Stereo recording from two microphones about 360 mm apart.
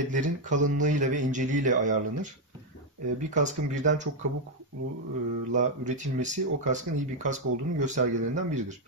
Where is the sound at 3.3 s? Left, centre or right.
Centre.